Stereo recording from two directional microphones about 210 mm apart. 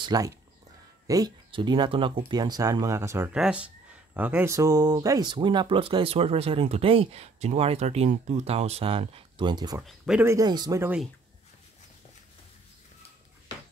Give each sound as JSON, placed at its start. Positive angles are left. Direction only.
{"t": 0.0, "sound": "speech", "side_deg": -20}
{"t": 9.8, "sound": "speech", "side_deg": 0}
{"t": 10.2, "sound": "speech", "side_deg": -15}